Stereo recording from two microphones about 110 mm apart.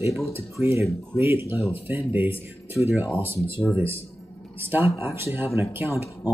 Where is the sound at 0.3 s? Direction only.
25° right (ahead or behind).